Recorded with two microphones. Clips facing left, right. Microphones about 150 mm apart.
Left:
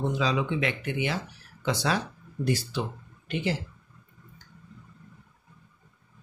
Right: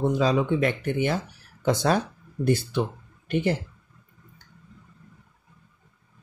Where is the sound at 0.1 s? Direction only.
45° right (ahead or behind).